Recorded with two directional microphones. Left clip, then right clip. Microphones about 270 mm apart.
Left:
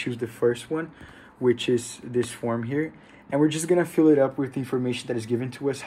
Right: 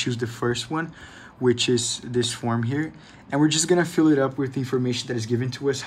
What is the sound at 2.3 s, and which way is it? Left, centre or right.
Speech, centre.